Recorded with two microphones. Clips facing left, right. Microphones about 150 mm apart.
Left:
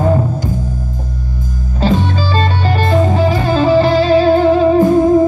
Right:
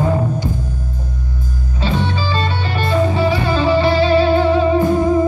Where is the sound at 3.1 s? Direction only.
45° left (ahead or behind).